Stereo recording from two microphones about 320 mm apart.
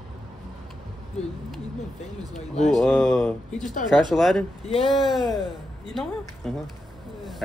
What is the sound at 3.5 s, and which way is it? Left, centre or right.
Speech, left.